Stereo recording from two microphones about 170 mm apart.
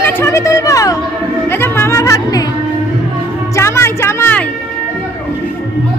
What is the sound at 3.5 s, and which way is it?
Music, 15° left (ahead or behind).